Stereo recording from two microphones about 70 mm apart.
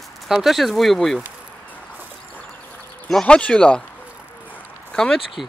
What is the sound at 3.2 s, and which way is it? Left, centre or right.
Speech, centre.